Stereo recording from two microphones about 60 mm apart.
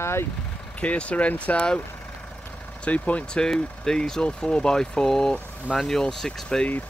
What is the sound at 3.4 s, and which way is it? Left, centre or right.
Speech, centre.